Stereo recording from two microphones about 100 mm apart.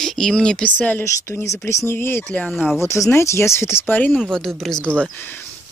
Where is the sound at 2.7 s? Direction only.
30° left (ahead or behind).